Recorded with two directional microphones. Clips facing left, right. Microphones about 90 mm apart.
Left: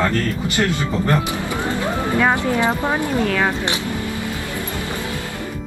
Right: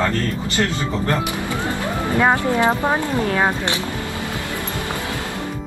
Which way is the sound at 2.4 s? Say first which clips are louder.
Right 1 dB; 20° right (ahead or behind).